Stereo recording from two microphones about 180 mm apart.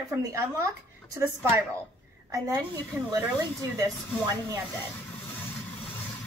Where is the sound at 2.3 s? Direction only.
20° right (ahead or behind).